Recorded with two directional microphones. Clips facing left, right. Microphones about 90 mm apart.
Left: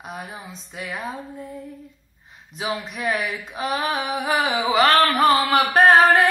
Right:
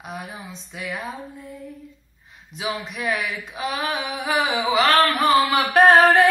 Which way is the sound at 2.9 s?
35° left (ahead or behind).